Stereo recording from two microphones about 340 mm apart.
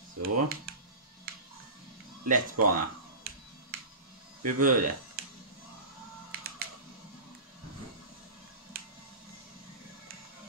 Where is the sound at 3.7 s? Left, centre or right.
Right.